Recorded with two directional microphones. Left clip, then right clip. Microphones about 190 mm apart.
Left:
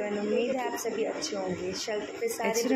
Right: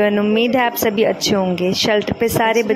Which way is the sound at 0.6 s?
45° right (ahead or behind).